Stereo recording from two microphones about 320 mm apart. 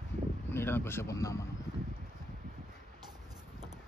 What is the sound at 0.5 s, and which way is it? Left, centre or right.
Speech, centre.